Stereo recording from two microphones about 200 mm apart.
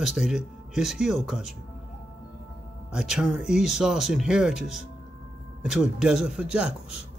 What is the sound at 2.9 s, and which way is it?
Speech, 5° right (ahead or behind).